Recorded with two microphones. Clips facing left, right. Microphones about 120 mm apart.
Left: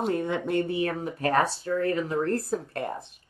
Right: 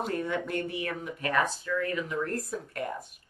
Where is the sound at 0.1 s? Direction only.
25° left (ahead or behind).